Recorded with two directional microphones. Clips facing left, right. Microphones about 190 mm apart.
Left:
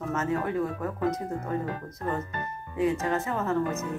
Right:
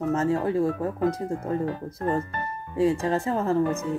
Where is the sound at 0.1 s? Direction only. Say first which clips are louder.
Right 4 dB; 30° right (ahead or behind).